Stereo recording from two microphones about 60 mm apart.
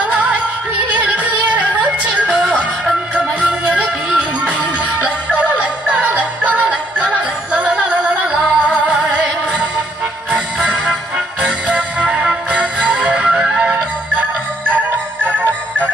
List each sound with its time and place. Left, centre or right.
1.0 s music: centre
15.2 s music: right